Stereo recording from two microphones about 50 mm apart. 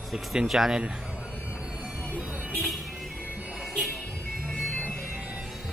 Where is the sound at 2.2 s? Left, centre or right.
Right.